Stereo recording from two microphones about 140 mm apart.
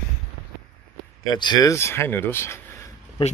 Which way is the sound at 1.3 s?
30° left (ahead or behind).